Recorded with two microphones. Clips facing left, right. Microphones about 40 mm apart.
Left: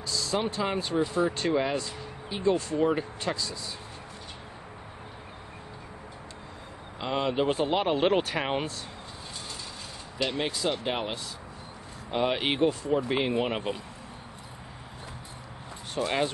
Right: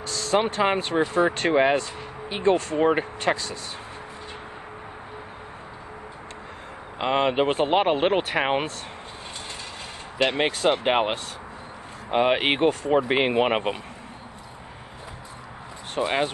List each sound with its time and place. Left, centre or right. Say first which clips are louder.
0.0 s speech: right 6 dB; right
7.0 s speech: right 6 dB; right
10.1 s speech: right 7 dB; right
16.0 s speech: right 4 dB; right